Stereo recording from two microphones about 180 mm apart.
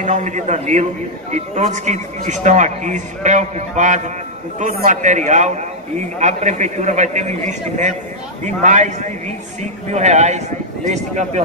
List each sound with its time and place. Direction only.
0.0 s a man's voice: 40° right (ahead or behind)